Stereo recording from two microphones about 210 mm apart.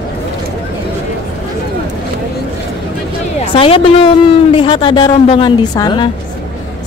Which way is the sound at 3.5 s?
25° left (ahead or behind).